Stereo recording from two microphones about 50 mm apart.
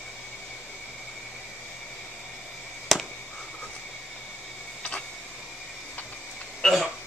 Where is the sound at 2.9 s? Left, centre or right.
Centre.